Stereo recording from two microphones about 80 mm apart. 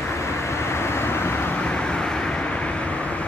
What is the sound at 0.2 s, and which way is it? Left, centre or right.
Vehicle, left.